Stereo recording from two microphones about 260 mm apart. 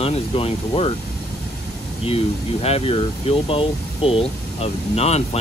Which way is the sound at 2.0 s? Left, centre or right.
Left.